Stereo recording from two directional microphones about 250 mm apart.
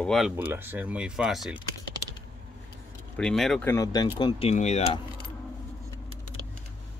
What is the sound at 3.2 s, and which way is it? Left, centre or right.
Speech, centre.